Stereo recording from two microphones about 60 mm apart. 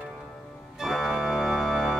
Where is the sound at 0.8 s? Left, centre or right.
Centre.